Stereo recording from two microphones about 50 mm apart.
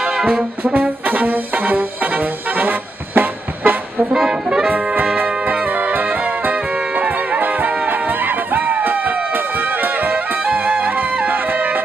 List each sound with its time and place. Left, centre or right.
0.0 s brass instrument: centre; by 3.7 s right
4.1 s music: centre
4.6 s brass instrument: right
5.1 s music: right